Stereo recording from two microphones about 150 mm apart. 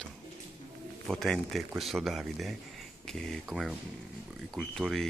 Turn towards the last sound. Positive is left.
turn(degrees=5)  # may be behind; listen again after turning